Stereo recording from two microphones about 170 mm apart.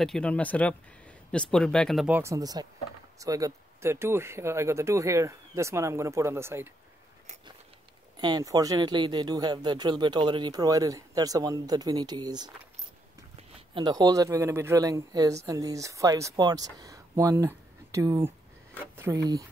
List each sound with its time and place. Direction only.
0.0 s speech: 5° left (ahead or behind)
2.0 s speech: 15° right (ahead or behind)
8.2 s speech: 25° right (ahead or behind)